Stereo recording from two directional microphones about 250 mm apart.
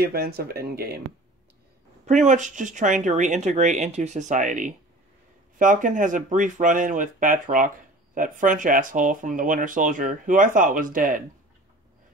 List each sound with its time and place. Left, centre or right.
0.0 s speech: right
2.2 s speech: right